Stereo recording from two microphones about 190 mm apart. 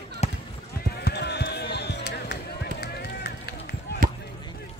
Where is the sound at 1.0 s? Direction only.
60° left (ahead or behind).